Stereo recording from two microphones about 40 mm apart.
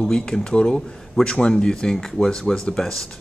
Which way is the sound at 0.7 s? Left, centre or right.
Centre.